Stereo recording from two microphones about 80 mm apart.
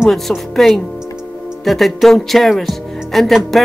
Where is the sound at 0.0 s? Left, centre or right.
Centre.